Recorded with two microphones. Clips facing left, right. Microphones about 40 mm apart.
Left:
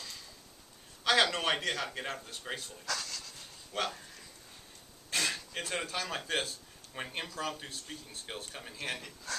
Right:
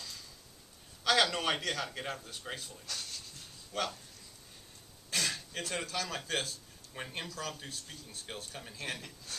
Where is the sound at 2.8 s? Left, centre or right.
Left.